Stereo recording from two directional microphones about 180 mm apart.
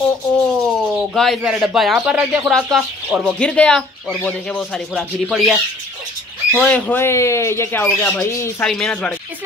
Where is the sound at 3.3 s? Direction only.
5° left (ahead or behind).